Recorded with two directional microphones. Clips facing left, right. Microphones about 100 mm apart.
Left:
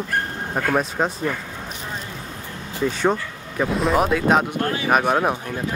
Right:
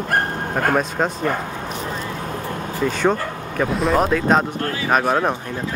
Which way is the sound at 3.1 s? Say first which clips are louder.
Right 2 dB; 5° left (ahead or behind).